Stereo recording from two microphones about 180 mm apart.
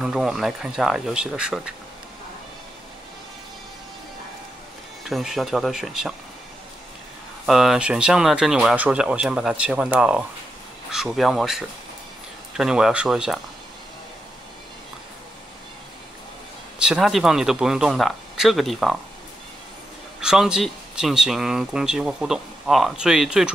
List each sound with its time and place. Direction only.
0.0 s speech: centre (ahead or behind)
5.0 s speech: centre (ahead or behind)
7.4 s speech: centre (ahead or behind)
16.7 s speech: 5° right (ahead or behind)
20.2 s speech: 5° right (ahead or behind)